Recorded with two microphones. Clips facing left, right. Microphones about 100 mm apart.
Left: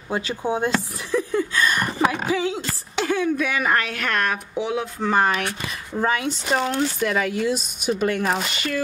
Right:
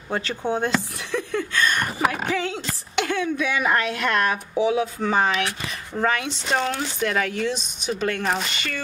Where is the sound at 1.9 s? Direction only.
5° right (ahead or behind).